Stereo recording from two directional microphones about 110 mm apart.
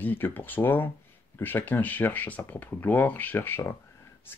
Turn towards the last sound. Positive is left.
turn(degrees=20)  # may be behind; listen again after turning